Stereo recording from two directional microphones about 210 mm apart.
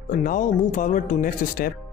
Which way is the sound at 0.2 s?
40° left (ahead or behind).